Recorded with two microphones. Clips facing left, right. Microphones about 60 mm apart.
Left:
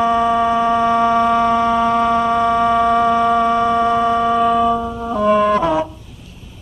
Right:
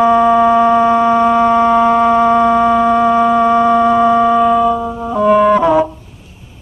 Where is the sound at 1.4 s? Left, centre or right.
Right.